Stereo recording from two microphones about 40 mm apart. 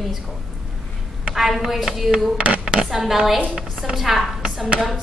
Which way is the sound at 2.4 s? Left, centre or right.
Right.